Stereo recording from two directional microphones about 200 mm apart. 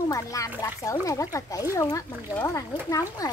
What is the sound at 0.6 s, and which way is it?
Speech, 15° left (ahead or behind).